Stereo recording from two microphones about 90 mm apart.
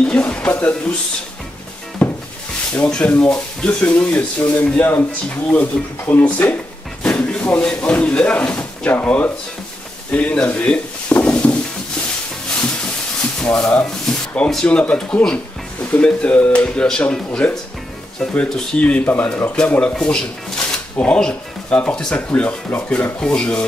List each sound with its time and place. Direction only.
0.1 s speech: 10° left (ahead or behind)
2.0 s rub: 10° left (ahead or behind)
2.7 s speech: 10° left (ahead or behind)
13.4 s speech: 10° left (ahead or behind)
13.8 s a sound: 10° left (ahead or behind)
14.5 s speech: 10° left (ahead or behind)